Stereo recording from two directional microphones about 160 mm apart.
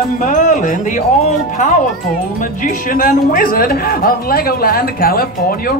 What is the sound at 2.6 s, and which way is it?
Speech, 65° left (ahead or behind).